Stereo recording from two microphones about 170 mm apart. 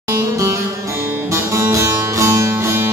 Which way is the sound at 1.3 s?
15° right (ahead or behind).